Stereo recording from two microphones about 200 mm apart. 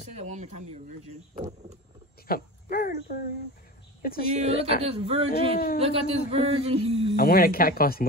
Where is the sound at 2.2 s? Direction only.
50° left (ahead or behind).